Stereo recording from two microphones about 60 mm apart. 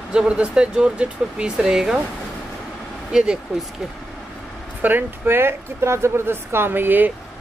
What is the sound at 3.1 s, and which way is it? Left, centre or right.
Speech, centre.